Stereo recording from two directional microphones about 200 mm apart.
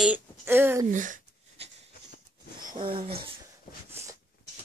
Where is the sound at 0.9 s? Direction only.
40° right (ahead or behind).